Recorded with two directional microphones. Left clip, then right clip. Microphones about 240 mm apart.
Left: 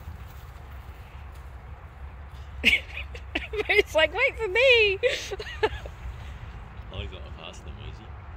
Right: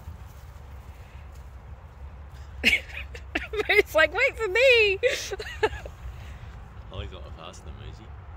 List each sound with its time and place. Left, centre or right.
2.6 s speech: centre
6.9 s vehicle: right